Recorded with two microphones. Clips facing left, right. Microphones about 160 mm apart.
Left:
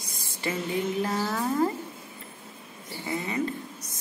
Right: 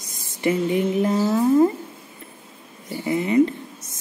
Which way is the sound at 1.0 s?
25° right (ahead or behind).